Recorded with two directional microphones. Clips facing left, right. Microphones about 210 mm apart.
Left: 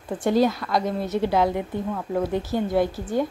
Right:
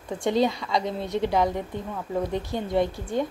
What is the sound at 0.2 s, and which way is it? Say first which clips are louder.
A woman's voice: left 3 dB; 5° left (ahead or behind).